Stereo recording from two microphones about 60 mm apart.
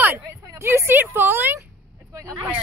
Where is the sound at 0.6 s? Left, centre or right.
Right.